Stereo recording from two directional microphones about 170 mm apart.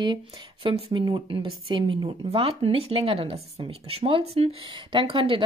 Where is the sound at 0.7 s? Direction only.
30° right (ahead or behind).